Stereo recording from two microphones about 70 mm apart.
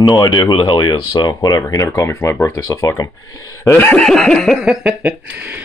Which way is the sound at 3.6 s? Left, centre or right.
Left.